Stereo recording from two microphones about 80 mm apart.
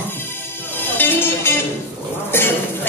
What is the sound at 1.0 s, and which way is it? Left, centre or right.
Music, left.